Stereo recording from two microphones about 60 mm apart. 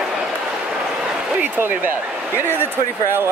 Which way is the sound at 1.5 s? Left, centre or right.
Right.